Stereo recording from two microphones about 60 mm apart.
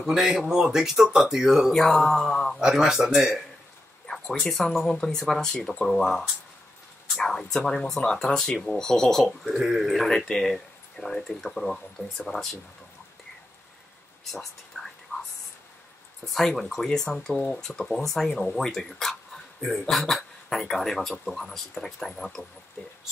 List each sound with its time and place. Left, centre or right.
0.0 s speech: centre
1.7 s speech: centre
2.6 s speech: centre
4.1 s speech: centre
9.6 s speech: centre
14.7 s whispering: centre
15.1 s whispering: left
16.3 s speech: centre